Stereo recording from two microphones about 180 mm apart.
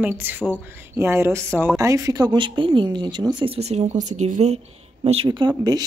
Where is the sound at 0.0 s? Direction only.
10° right (ahead or behind).